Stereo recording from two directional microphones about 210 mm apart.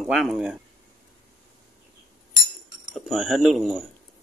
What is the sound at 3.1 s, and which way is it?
Speech, centre (ahead or behind).